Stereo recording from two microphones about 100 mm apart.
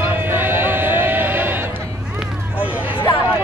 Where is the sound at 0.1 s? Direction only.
20° right (ahead or behind).